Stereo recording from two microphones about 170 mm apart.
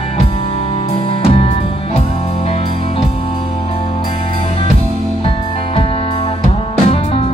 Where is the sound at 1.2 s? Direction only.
35° left (ahead or behind).